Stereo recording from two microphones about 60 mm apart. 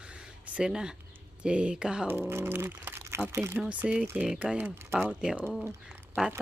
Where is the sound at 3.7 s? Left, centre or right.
Right.